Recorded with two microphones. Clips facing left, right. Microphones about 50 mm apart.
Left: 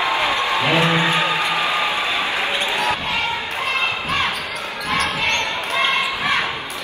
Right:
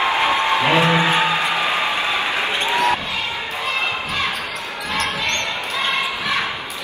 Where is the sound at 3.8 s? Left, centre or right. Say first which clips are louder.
Left 2 dB; left.